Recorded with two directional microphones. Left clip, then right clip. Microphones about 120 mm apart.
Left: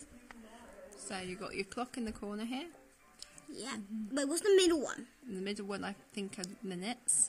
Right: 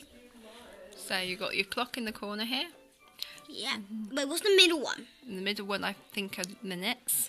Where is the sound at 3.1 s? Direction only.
30° left (ahead or behind).